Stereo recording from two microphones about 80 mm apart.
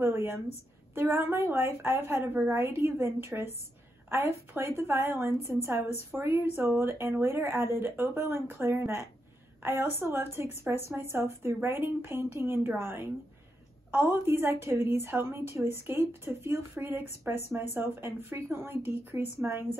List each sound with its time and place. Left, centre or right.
0.0 s a woman's voice: right